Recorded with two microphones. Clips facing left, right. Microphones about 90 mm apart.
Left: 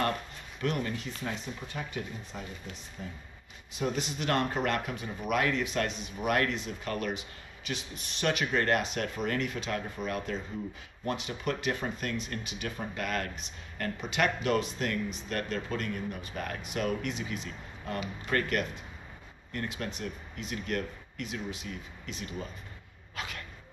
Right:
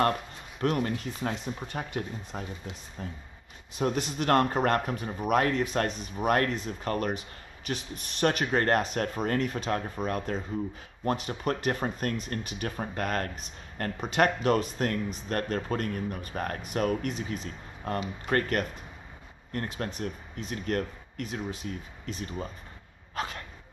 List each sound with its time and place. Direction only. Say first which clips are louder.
0.6 s speech: right 4 dB; 45° right (ahead or behind)